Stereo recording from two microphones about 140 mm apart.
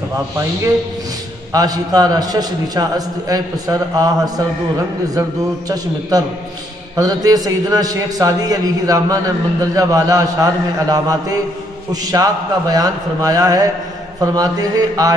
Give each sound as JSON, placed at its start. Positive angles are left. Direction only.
{"t": 1.5, "sound": "a man's voice", "side_deg": -30}
{"t": 5.7, "sound": "a man's voice", "side_deg": -25}